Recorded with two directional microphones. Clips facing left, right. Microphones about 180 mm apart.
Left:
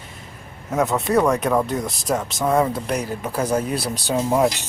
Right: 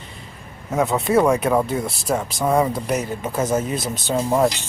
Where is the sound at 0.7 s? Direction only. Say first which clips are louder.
Right 1 dB; centre (ahead or behind).